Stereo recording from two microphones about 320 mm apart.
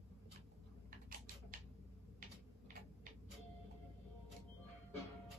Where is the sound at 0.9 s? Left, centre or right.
Right.